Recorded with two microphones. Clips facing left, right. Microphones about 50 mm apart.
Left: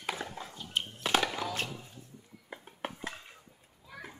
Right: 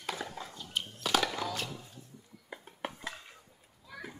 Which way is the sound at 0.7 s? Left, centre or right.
Left.